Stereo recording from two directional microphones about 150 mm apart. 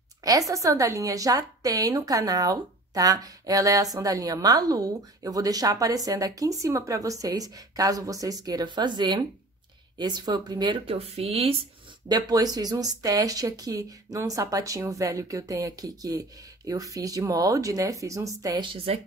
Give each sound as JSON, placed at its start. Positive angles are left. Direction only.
{"t": 0.2, "sound": "a woman's voice", "side_deg": -25}
{"t": 11.0, "sound": "speech", "side_deg": -45}
{"t": 12.1, "sound": "a woman's voice", "side_deg": -25}